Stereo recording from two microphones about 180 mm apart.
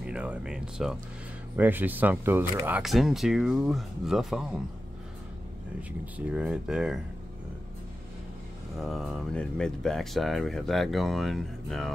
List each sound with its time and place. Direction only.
0.0 s music: 5° right (ahead or behind)
1.6 s speech: 10° right (ahead or behind)
5.8 s speech: 5° right (ahead or behind)
8.7 s speech: centre (ahead or behind)